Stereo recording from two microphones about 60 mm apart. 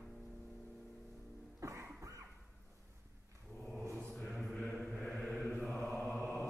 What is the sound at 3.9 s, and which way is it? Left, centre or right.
Mantra, centre.